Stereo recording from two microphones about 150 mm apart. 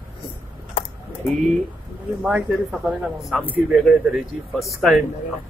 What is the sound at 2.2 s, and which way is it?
Speech, 10° right (ahead or behind).